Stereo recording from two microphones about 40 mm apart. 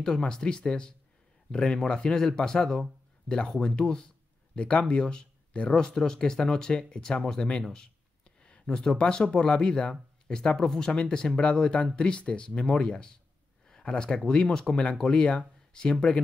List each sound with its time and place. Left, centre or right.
0.0 s speech: centre
7.6 s a sound: centre
8.9 s speech: left